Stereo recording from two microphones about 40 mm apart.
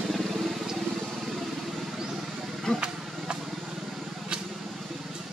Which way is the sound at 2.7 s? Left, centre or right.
Centre.